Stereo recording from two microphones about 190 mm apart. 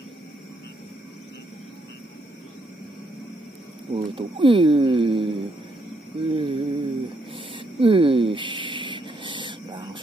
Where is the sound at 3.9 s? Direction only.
30° right (ahead or behind).